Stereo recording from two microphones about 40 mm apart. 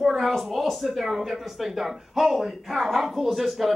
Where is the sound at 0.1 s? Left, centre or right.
Centre.